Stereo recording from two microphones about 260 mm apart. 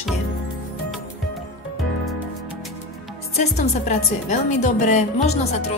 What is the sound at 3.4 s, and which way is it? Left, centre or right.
A woman's voice, left.